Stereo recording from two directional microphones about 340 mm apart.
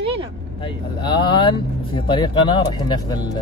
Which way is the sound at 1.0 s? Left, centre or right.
Centre.